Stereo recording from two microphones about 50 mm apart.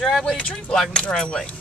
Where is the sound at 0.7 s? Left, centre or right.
Centre.